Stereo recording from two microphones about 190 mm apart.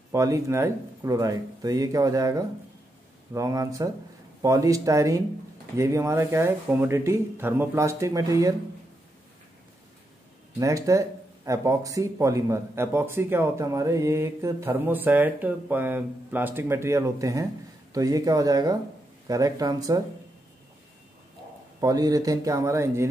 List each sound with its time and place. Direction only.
0.1 s speech: 15° right (ahead or behind)
10.6 s speech: 15° right (ahead or behind)
21.7 s speech: 20° right (ahead or behind)